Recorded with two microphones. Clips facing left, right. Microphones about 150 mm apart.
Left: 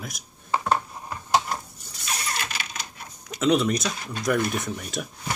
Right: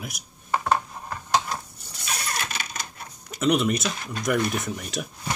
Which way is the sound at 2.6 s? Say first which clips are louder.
Right 1 dB; 45° right (ahead or behind).